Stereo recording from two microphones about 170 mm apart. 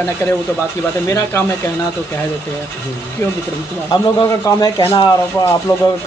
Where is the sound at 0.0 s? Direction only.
15° left (ahead or behind).